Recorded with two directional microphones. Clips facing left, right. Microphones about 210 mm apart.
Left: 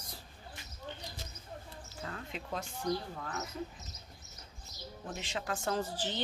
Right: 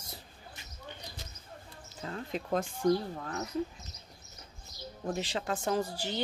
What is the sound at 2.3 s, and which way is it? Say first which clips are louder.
Speech: right 10 dB; 50° right (ahead or behind).